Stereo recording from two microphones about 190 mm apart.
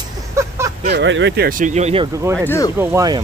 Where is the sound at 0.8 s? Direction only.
65° right (ahead or behind).